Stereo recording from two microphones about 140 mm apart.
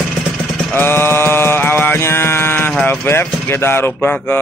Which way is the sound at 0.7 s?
15° left (ahead or behind).